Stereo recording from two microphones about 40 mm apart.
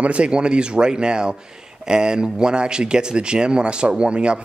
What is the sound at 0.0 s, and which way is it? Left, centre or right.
Speech, right.